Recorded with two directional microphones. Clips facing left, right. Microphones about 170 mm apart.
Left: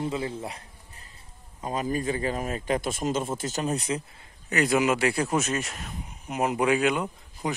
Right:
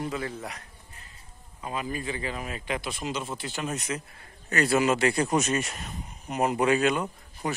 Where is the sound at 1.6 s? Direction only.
40° left (ahead or behind).